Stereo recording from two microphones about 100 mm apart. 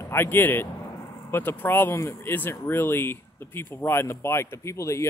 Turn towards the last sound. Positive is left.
turn(degrees=30)  # may be behind; listen again after turning